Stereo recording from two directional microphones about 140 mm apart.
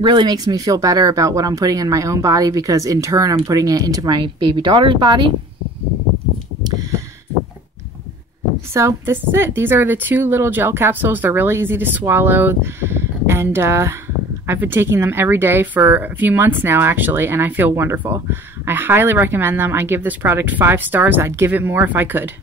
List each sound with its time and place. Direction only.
0.0 s speech: 35° right (ahead or behind)
8.7 s speech: 20° right (ahead or behind)